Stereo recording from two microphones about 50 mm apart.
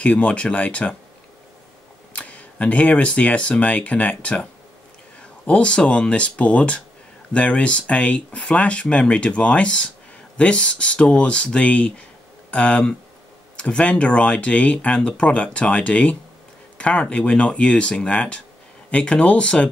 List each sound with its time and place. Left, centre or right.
0.0 s speech: left
2.1 s speech: left
5.5 s speech: left